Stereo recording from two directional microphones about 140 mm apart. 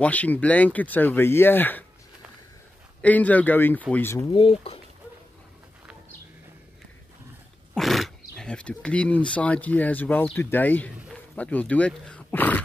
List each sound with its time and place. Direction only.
0.0 s speech: 10° left (ahead or behind)
3.0 s speech: 10° left (ahead or behind)
4.3 s speech: 40° left (ahead or behind)
7.7 s speech: centre (ahead or behind)